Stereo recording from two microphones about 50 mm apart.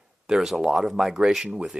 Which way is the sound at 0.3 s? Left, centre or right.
Centre.